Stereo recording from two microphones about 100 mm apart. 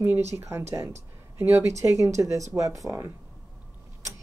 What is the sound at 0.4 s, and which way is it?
A woman's voice, 25° right (ahead or behind).